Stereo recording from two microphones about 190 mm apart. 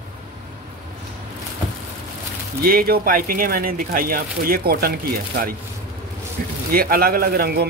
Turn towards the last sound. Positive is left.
turn(degrees=-55)  # may be behind; listen again after turning